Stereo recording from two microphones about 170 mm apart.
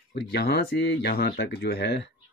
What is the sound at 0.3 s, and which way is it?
Speech, 75° left (ahead or behind).